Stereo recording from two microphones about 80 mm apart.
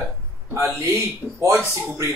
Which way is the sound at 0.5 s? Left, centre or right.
Right.